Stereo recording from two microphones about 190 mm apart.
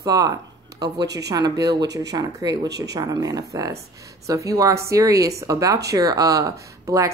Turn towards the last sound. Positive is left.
turn(degrees=-15)  # may be behind; listen again after turning